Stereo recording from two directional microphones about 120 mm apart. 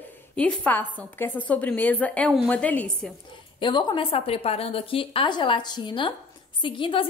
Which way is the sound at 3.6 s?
40° left (ahead or behind).